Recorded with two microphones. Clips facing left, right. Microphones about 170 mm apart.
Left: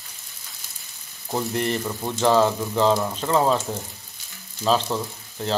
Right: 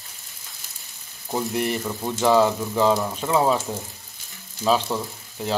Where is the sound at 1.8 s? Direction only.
5° right (ahead or behind).